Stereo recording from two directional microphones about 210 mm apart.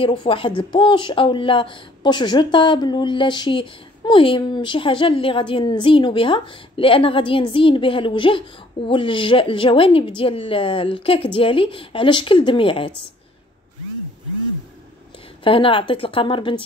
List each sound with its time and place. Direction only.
0.0 s speech: 25° left (ahead or behind)
15.4 s speech: 25° left (ahead or behind)